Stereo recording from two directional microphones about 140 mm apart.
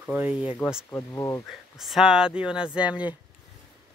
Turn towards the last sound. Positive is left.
turn(degrees=-10)  # may be behind; listen again after turning